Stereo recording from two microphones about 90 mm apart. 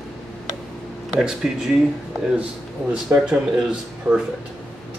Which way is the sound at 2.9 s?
10° right (ahead or behind).